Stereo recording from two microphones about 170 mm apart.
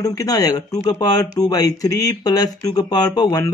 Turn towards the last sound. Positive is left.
turn(degrees=20)  # may be behind; listen again after turning